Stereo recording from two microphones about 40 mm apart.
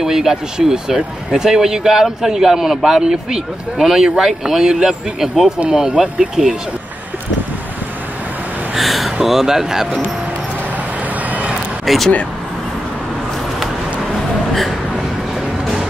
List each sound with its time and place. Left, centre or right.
0.0 s speech: centre
8.7 s speech: centre
11.3 s a sound: right
11.8 s speech: centre